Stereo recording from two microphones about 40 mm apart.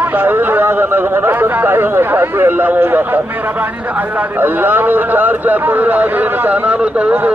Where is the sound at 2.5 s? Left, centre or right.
Right.